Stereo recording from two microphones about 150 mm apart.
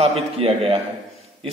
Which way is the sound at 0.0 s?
40° right (ahead or behind).